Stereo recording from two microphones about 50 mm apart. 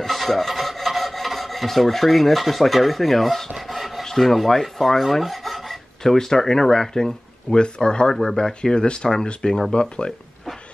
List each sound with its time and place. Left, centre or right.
0.0 s filing: centre
4.0 s rub: centre
5.1 s filing: centre
6.1 s speech: centre
8.1 s speech: centre